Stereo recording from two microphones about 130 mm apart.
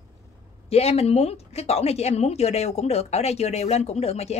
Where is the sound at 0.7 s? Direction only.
50° left (ahead or behind).